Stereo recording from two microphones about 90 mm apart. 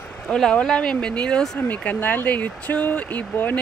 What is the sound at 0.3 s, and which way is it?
Speech, 10° left (ahead or behind).